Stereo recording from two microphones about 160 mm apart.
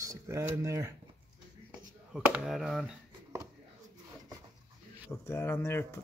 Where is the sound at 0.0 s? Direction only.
20° right (ahead or behind).